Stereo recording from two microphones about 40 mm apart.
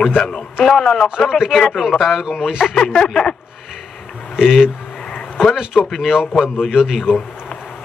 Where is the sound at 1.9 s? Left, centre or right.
Centre.